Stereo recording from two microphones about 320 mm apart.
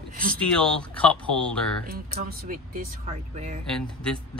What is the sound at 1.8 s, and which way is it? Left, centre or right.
Speech, right.